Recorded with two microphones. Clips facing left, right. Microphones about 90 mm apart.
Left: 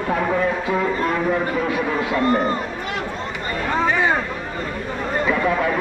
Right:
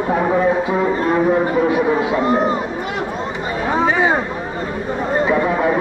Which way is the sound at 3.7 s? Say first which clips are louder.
Right 3 dB; 15° right (ahead or behind).